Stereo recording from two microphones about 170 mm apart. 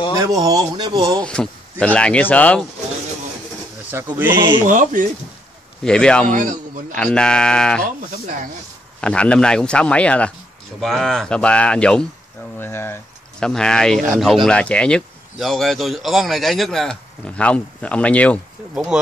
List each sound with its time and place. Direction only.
0.2 s speech: 20° right (ahead or behind)
1.2 s speech: 5° left (ahead or behind)
3.9 s speech: 15° right (ahead or behind)
4.6 s a man's voice: 50° right (ahead or behind)
5.9 s speech: 5° left (ahead or behind)
6.3 s a man's voice: 50° right (ahead or behind)
7.0 s speech: 5° left (ahead or behind)
9.0 s speech: 5° left (ahead or behind)